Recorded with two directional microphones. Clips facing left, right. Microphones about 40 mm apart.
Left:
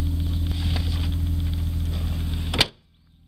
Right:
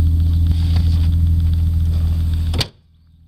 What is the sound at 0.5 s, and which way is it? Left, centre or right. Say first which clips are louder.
Vehicle: right 6 dB; centre.